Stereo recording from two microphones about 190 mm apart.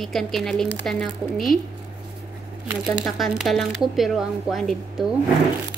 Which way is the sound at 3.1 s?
Centre (ahead or behind).